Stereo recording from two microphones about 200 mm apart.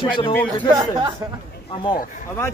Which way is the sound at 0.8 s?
20° right (ahead or behind).